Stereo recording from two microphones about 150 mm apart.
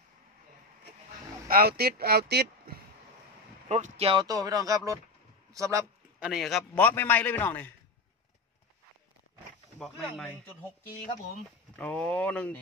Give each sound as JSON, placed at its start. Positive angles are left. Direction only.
{"t": 1.5, "sound": "speech", "side_deg": -85}
{"t": 3.6, "sound": "speech", "side_deg": -50}
{"t": 4.2, "sound": "speech", "side_deg": -25}
{"t": 6.1, "sound": "a man's voice", "side_deg": -5}
{"t": 6.7, "sound": "a man's voice", "side_deg": 15}
{"t": 9.8, "sound": "speech", "side_deg": 0}
{"t": 11.8, "sound": "a man's voice", "side_deg": 10}